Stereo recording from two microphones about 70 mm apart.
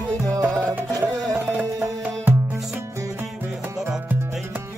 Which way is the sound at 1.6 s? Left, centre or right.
Right.